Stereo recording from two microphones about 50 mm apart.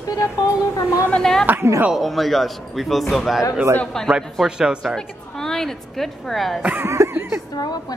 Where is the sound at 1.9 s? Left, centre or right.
Centre.